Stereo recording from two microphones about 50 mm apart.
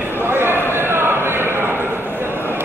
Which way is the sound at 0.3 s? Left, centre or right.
Right.